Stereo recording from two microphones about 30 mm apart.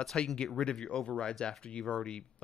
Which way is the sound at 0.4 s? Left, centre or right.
Left.